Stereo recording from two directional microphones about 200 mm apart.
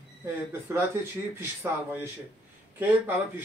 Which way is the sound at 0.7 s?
10° right (ahead or behind).